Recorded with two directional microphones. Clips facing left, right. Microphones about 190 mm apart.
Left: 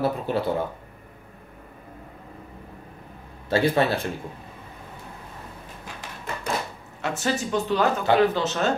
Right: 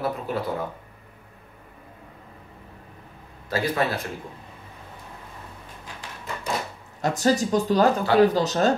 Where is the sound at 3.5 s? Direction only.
30° left (ahead or behind).